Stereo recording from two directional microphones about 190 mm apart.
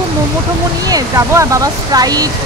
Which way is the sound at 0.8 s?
15° right (ahead or behind).